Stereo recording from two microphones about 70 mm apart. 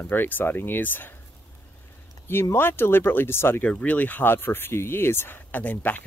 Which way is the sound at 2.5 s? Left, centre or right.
Left.